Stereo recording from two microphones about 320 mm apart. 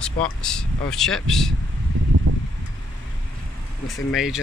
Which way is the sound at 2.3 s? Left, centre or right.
Right.